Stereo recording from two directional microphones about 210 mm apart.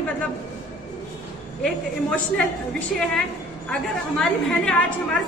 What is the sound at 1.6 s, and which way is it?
Speech, 5° left (ahead or behind).